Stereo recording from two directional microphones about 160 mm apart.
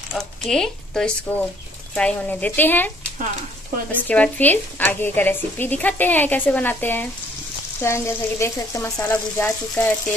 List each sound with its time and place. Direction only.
0.1 s speech: 5° left (ahead or behind)
3.9 s speech: 10° left (ahead or behind)